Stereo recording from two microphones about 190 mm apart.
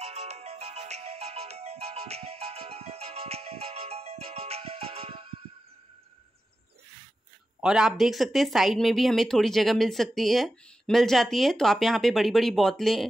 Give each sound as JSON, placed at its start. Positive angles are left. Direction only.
{"t": 0.0, "sound": "music", "side_deg": -35}
{"t": 7.6, "sound": "speech", "side_deg": -5}